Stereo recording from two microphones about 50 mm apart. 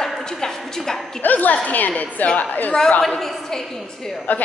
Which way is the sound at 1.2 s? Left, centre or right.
Left.